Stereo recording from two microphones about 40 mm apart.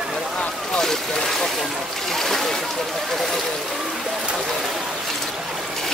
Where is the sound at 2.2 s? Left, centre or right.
Centre.